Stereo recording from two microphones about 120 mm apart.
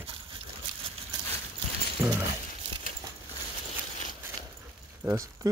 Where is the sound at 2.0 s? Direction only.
20° right (ahead or behind).